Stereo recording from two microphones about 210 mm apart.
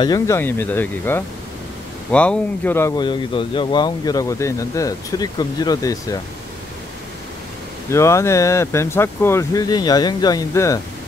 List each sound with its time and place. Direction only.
0.0 s speech: 15° left (ahead or behind)
3.0 s speech: 25° left (ahead or behind)
7.9 s speech: 15° left (ahead or behind)